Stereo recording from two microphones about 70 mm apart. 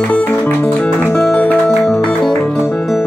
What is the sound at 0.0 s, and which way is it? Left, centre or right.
Music, left.